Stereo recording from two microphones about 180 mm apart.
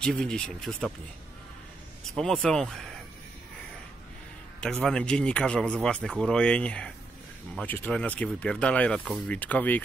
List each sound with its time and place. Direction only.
0.0 s a man's voice: 5° left (ahead or behind)
2.0 s a man's voice: centre (ahead or behind)
4.6 s a man's voice: 5° left (ahead or behind)